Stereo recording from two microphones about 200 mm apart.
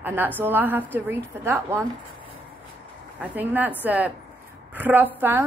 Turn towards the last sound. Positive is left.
turn(degrees=-10)  # may be behind; listen again after turning